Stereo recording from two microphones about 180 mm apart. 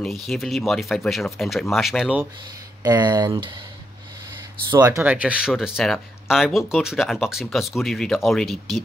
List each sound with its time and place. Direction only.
0.0 s speech: centre (ahead or behind)
2.8 s speech: 20° right (ahead or behind)
4.6 s speech: 20° right (ahead or behind); by 8.5 s centre (ahead or behind)